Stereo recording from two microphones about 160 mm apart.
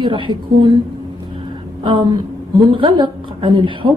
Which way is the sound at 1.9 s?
30° right (ahead or behind).